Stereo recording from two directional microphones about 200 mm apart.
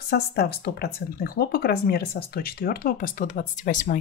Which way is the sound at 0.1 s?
50° left (ahead or behind).